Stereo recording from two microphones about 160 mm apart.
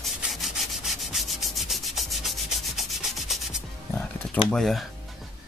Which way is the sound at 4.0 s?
5° left (ahead or behind).